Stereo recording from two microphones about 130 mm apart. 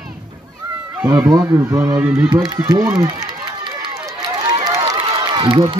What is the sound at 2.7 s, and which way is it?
Run, 30° right (ahead or behind).